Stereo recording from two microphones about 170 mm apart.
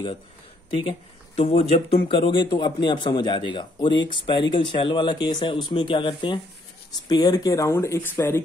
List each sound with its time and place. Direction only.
0.8 s speech: 35° left (ahead or behind); by 8.5 s 15° left (ahead or behind)